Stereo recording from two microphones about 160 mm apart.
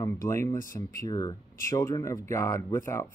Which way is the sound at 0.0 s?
20° left (ahead or behind).